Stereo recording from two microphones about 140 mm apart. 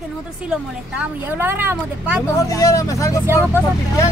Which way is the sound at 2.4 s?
25° left (ahead or behind).